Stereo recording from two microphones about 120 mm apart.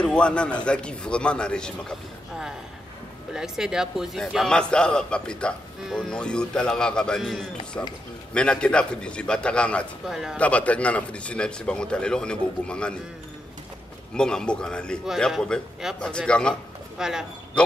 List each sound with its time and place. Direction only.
0.0 s speech: 10° left (ahead or behind)
3.3 s a man's voice: 5° right (ahead or behind)
10.0 s a man's voice: 5° right (ahead or behind)
10.3 s speech: 10° left (ahead or behind)
14.1 s a man's voice: 5° left (ahead or behind)
17.0 s a man's voice: 5° right (ahead or behind)